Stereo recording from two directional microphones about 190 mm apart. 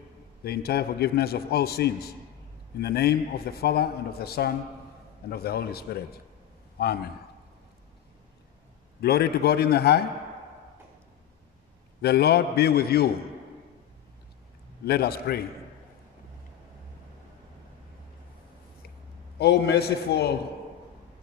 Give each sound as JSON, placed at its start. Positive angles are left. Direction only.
{"t": 0.4, "sound": "a man's voice", "side_deg": 55}
{"t": 9.0, "sound": "a man's voice", "side_deg": 55}
{"t": 12.0, "sound": "a man's voice", "side_deg": 55}
{"t": 14.9, "sound": "a man's voice", "side_deg": 55}
{"t": 19.3, "sound": "a man's voice", "side_deg": 60}